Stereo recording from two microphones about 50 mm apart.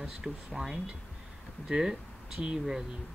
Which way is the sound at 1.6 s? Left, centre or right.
Centre.